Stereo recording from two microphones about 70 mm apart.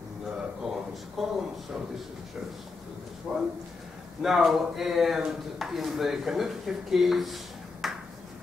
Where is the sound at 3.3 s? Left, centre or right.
Centre.